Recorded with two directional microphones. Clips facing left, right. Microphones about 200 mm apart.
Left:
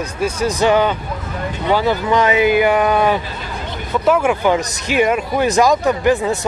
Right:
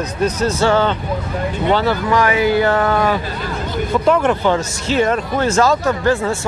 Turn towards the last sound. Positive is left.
turn(degrees=15)  # may be behind; listen again after turning